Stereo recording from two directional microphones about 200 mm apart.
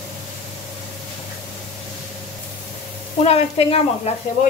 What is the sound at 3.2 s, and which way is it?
Speech, 30° left (ahead or behind).